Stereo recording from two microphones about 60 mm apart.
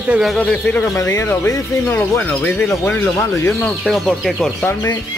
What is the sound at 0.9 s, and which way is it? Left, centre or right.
Speech, left.